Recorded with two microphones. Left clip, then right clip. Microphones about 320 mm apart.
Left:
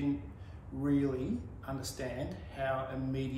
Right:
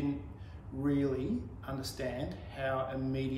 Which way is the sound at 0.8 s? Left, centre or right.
Centre.